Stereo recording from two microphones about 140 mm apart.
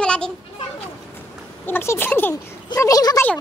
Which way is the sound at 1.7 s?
15° left (ahead or behind).